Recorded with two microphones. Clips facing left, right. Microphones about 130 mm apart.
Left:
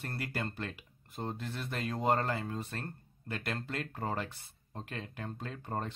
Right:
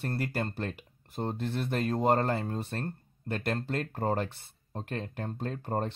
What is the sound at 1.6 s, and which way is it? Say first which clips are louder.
Speech: right 8 dB; 45° right (ahead or behind).